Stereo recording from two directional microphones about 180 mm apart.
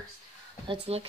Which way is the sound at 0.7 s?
35° right (ahead or behind).